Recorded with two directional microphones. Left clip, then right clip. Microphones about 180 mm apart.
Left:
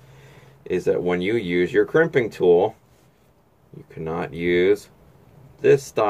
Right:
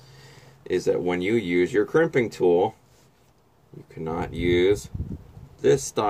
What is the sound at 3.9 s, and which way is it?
Speech, 20° right (ahead or behind).